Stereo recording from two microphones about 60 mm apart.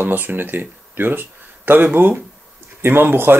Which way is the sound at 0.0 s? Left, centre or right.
Right.